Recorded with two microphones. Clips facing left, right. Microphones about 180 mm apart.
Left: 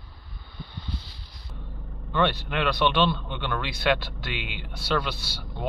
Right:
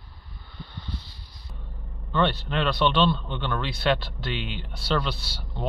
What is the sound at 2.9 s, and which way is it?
Speech, 10° left (ahead or behind).